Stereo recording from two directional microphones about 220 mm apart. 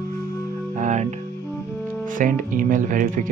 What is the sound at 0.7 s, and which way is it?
Music, 35° right (ahead or behind).